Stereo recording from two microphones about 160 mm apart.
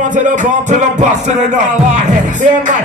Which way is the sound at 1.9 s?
50° right (ahead or behind).